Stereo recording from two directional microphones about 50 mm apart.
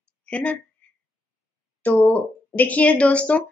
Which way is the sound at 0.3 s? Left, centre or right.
Left.